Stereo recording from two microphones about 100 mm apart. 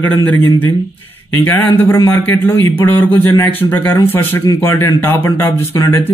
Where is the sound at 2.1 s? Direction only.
20° left (ahead or behind).